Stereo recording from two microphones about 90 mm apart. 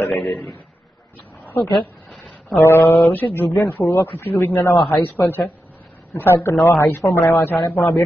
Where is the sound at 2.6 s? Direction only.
30° left (ahead or behind).